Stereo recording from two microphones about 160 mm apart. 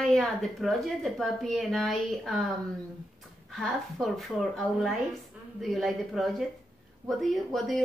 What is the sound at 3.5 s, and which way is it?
A woman's voice, centre (ahead or behind).